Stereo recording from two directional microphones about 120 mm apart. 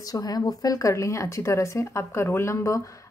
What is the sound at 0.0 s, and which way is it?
A woman's voice, 30° left (ahead or behind).